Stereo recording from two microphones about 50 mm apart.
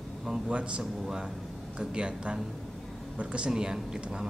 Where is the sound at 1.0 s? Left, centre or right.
Centre.